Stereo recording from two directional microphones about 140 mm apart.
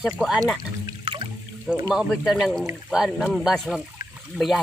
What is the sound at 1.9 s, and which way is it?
Speech, 5° right (ahead or behind).